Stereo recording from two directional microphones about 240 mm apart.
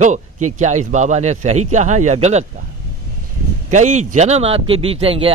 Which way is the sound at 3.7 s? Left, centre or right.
Right.